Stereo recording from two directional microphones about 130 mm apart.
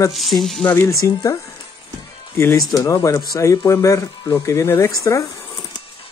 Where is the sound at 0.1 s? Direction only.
Centre (ahead or behind).